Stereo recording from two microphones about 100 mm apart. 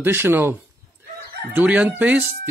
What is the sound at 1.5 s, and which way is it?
Chicken, 15° right (ahead or behind).